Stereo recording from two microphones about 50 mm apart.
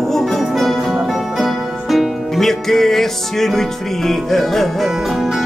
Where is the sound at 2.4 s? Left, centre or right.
Centre.